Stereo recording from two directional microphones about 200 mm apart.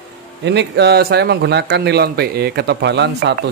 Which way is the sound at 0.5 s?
60° right (ahead or behind).